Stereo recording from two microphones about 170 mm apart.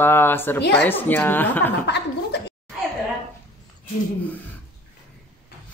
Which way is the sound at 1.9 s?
85° left.